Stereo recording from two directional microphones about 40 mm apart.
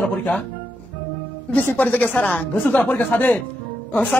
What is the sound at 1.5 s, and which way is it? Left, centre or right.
Speech, left.